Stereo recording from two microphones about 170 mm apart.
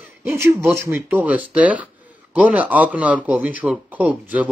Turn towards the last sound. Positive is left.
turn(degrees=-10)  # may be behind; listen again after turning